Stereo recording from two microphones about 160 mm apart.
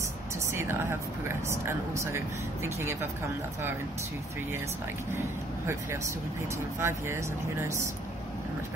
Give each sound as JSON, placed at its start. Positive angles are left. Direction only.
{"t": 0.5, "sound": "speech", "side_deg": -15}
{"t": 5.7, "sound": "speech", "side_deg": -15}